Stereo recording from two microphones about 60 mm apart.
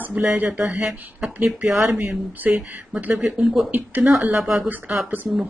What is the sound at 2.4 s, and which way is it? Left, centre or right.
Speech, right.